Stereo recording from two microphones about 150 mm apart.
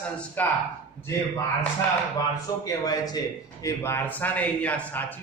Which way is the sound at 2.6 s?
25° left (ahead or behind).